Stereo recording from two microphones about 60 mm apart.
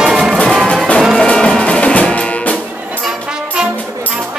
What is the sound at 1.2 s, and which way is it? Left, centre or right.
Music, centre.